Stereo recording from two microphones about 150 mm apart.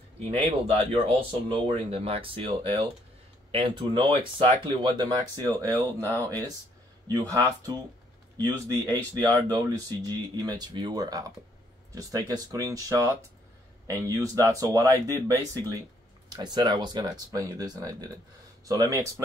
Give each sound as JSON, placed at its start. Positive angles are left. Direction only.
{"t": 0.3, "sound": "speech", "side_deg": -40}
{"t": 5.7, "sound": "speech", "side_deg": 15}
{"t": 7.1, "sound": "speech", "side_deg": -25}